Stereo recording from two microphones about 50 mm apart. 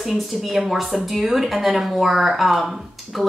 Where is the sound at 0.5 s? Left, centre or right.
Centre.